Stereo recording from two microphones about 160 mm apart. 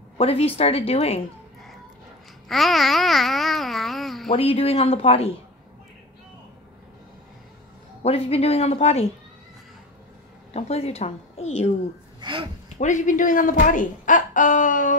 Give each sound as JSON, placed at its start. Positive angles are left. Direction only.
{"t": 0.2, "sound": "a woman's voice", "side_deg": 35}
{"t": 2.4, "sound": "babbling", "side_deg": 0}
{"t": 4.3, "sound": "a woman's voice", "side_deg": 35}
{"t": 8.0, "sound": "a woman's voice", "side_deg": 40}
{"t": 10.5, "sound": "a woman's voice", "side_deg": 40}
{"t": 12.2, "sound": "speech", "side_deg": -30}
{"t": 12.7, "sound": "speech", "side_deg": 50}